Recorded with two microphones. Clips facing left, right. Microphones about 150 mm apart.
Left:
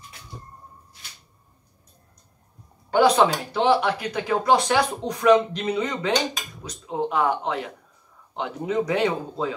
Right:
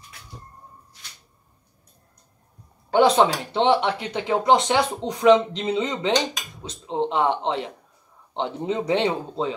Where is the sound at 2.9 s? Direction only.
25° right (ahead or behind).